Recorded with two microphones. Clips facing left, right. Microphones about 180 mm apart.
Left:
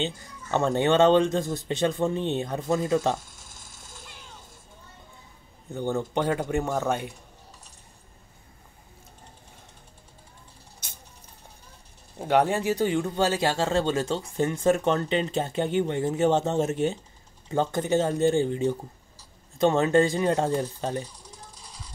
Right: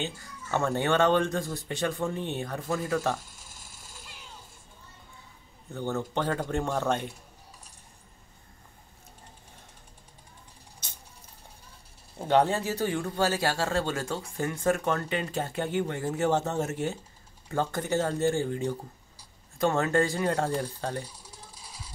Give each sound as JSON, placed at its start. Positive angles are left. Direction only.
{"t": 0.0, "sound": "speech", "side_deg": 20}
{"t": 5.7, "sound": "speech", "side_deg": 15}
{"t": 12.2, "sound": "speech", "side_deg": 10}
{"t": 21.0, "sound": "a sound", "side_deg": -10}